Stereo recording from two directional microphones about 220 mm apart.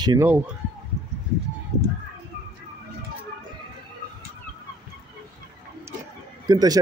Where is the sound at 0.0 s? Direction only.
20° right (ahead or behind).